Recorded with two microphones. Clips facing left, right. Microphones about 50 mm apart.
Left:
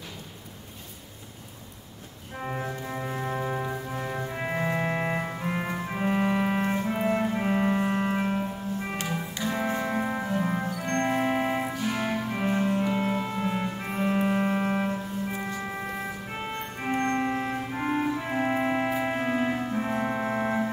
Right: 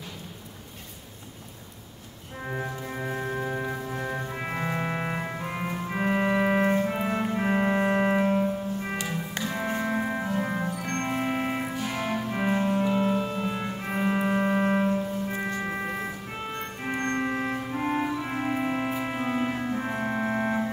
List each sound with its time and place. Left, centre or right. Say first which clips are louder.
2.4 s organ: even; centre
3.0 s organ: right 3 dB; centre
3.3 s organ: left 2 dB; centre
5.3 s music: left 2 dB; centre
5.6 s organ: even; centre
5.9 s organ: right 1 dB; centre
8.2 s music: right 4 dB; centre
12.4 s music: right 1 dB; centre
13.0 s music: right 2 dB; centre
13.6 s music: even; centre
15.4 s music: right 3 dB; right
16.5 s music: left 3 dB; centre
17.6 s clarinet: even; centre
18.2 s music: left 2 dB; centre